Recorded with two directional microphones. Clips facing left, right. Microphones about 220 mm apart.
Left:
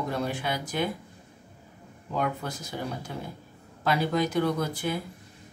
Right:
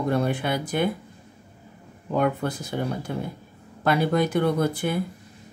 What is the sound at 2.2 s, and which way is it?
Speech, 55° right (ahead or behind).